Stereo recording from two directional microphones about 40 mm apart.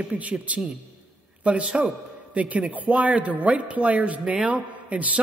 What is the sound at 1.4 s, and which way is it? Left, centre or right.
A man's voice, right.